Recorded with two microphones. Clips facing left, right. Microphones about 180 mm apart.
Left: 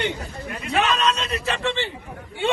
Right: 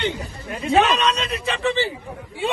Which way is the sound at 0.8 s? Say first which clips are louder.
Right 1 dB; centre (ahead or behind).